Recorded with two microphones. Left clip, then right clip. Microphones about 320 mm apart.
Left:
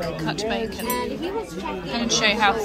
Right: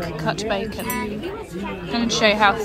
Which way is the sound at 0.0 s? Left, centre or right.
Centre.